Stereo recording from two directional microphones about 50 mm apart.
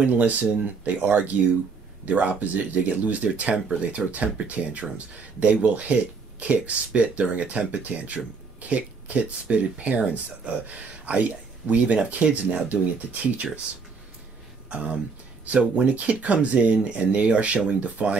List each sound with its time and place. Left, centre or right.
0.0 s speech: right
14.7 s speech: right